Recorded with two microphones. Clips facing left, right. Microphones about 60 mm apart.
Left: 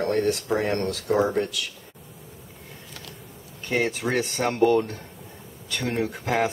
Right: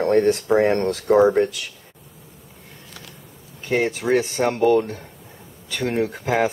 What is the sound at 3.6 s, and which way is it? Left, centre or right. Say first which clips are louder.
Speech: right 4 dB; centre.